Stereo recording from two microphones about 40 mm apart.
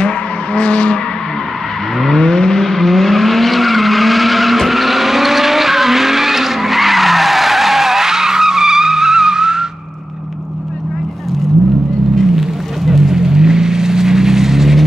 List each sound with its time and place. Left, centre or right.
0.6 s vehicle: left
2.0 s vehicle: centre
12.4 s vehicle: centre